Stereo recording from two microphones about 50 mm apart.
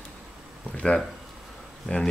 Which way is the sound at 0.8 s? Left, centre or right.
Left.